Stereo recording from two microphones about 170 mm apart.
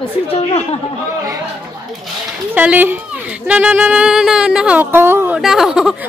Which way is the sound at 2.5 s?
10° right (ahead or behind).